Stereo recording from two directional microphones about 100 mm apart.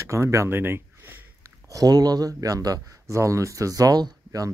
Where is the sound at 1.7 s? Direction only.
40° right (ahead or behind).